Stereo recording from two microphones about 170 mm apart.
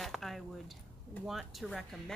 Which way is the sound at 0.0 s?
Centre (ahead or behind).